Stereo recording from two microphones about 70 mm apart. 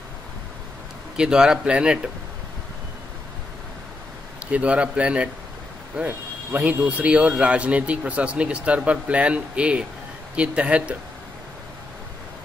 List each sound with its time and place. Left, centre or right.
1.1 s speech: centre
4.5 s speech: centre